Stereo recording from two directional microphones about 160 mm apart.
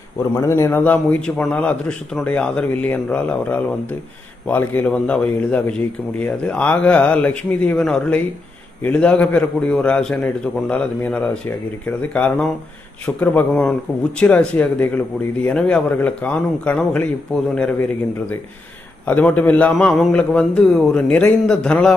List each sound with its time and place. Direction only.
0.4 s a man's voice: 15° left (ahead or behind)
19.0 s a man's voice: 10° left (ahead or behind)